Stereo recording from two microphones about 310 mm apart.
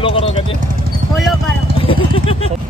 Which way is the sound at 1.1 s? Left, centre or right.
Centre.